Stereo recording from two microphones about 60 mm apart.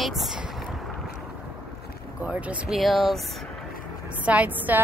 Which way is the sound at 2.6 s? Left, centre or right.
Centre.